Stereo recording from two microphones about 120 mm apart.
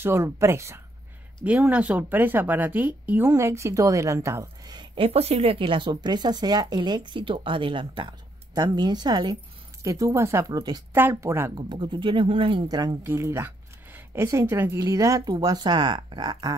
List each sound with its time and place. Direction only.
0.0 s a woman's voice: 20° right (ahead or behind)
1.4 s a woman's voice: 10° right (ahead or behind)
4.7 s a woman's voice: 45° right (ahead or behind)
10.9 s a woman's voice: 20° right (ahead or behind)
11.5 s speech: 40° right (ahead or behind)
12.6 s a woman's voice: 30° right (ahead or behind)